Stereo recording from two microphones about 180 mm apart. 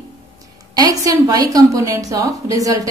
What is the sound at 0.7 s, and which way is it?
A woman's voice, 20° right (ahead or behind).